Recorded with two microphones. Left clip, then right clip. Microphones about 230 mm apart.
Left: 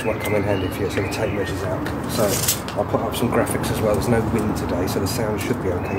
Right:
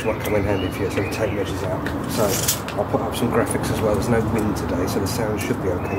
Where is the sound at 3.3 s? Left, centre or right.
Centre.